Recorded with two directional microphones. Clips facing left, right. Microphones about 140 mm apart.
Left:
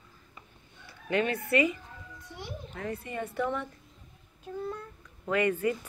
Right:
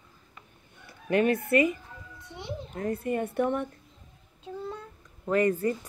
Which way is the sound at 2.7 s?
45° right (ahead or behind).